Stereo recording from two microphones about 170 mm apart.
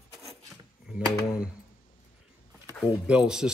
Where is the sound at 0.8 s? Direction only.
5° right (ahead or behind).